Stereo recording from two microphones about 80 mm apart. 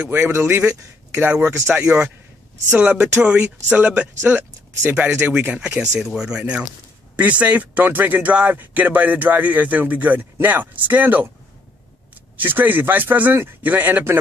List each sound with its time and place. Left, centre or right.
0.0 s speech: right
0.3 s speech: right
2.7 s speech: centre
5.8 s speech: centre
12.4 s speech: right